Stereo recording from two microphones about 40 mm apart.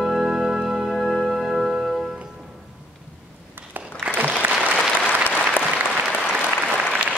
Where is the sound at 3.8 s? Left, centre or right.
Right.